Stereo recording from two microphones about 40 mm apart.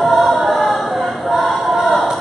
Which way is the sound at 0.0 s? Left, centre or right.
Centre.